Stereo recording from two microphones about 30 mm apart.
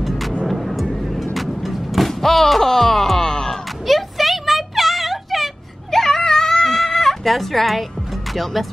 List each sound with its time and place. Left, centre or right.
0.5 s music: centre
3.8 s a sound: centre
5.9 s baby cry: centre
6.2 s a sound: centre
6.8 s chicken: centre
8.3 s speech: centre